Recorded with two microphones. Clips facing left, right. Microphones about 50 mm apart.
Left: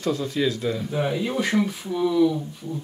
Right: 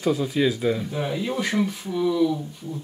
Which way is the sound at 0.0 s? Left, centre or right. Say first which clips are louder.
Right 2 dB; centre.